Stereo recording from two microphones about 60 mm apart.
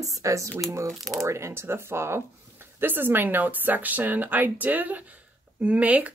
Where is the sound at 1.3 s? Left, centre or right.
Right.